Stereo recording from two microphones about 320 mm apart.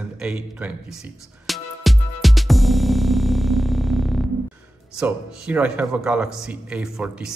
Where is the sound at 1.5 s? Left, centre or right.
Centre.